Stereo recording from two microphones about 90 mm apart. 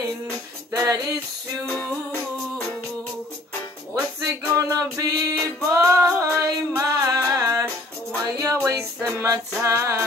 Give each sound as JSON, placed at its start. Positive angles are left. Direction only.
{"t": 0.7, "sound": "music", "side_deg": -40}
{"t": 1.7, "sound": "music", "side_deg": 5}
{"t": 4.3, "sound": "music", "side_deg": -40}